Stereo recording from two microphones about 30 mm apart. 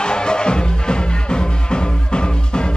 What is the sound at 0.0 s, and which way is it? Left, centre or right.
Music, left.